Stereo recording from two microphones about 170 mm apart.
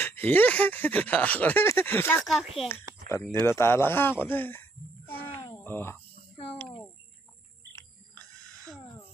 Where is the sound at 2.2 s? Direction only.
Centre (ahead or behind).